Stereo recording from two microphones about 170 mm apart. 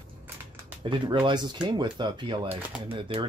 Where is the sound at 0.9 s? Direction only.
25° right (ahead or behind).